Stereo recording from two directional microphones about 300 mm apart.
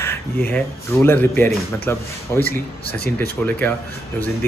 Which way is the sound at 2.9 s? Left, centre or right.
Left.